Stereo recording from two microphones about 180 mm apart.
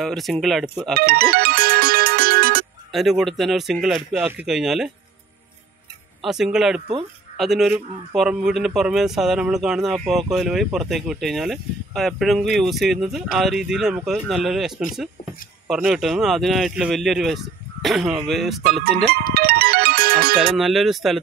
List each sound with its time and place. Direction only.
0.0 s speech: centre (ahead or behind)
0.9 s music: 60° right (ahead or behind)
2.9 s speech: centre (ahead or behind)
6.2 s speech: centre (ahead or behind)
15.7 s speech: 5° right (ahead or behind)
19.3 s music: 55° right (ahead or behind)
20.5 s speech: centre (ahead or behind)